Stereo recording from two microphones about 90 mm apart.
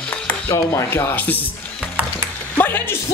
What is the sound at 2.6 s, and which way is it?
Music, 25° left (ahead or behind).